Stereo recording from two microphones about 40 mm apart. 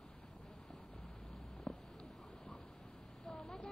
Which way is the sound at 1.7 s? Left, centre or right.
Centre.